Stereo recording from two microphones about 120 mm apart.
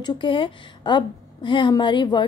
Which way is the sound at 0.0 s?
40° left (ahead or behind).